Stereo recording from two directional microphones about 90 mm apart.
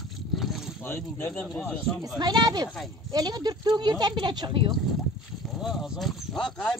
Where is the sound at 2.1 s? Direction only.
50° right (ahead or behind).